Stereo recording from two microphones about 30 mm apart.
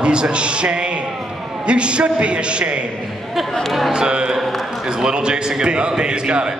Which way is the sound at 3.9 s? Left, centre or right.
Right.